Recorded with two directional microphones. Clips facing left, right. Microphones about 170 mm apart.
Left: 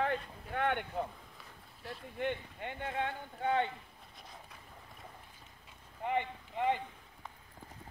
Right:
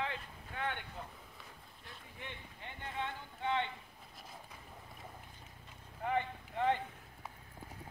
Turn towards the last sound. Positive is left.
turn(degrees=15)  # may be behind; listen again after turning